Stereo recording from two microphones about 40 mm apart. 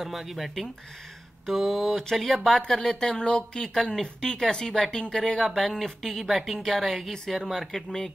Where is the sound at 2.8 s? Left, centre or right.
Centre.